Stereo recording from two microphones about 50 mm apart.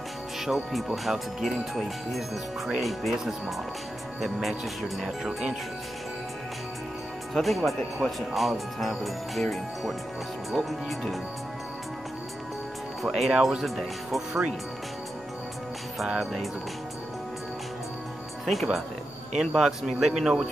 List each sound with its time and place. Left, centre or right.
0.9 s speech: centre
5.0 s a man's voice: centre
7.3 s speech: centre
10.5 s speech: centre
13.0 s speech: centre
18.4 s a man's voice: centre